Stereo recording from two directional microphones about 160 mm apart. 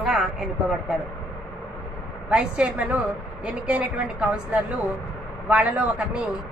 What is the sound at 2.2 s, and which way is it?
A woman's voice, 5° right (ahead or behind).